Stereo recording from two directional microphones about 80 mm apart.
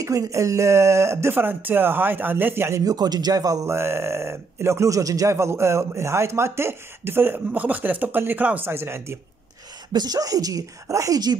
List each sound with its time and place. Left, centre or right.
0.0 s speech: right
2.8 s speech: right
3.7 s speech: right
9.9 s speech: right